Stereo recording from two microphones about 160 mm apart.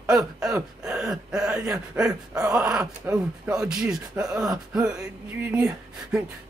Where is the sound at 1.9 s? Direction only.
5° right (ahead or behind).